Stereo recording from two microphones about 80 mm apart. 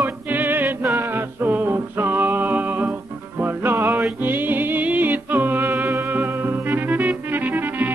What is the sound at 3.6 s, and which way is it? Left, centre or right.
Music, right.